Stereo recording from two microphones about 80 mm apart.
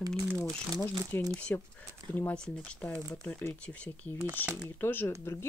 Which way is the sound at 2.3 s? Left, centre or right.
Centre.